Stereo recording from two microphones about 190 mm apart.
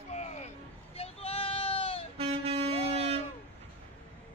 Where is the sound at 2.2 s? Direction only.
30° right (ahead or behind).